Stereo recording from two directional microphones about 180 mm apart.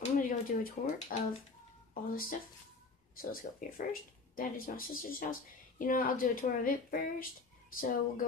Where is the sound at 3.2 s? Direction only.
50° left (ahead or behind).